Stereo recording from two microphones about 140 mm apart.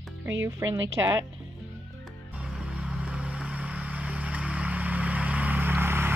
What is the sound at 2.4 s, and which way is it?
Vehicle, 5° right (ahead or behind).